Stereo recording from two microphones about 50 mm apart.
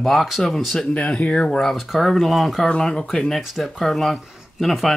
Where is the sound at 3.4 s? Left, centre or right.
Centre.